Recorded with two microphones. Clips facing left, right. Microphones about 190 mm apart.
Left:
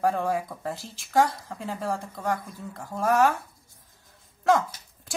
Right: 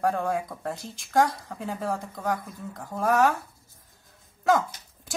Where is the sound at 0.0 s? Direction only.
Centre (ahead or behind).